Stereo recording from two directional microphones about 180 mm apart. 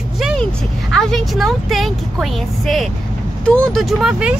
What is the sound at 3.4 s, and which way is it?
Speech, 5° left (ahead or behind).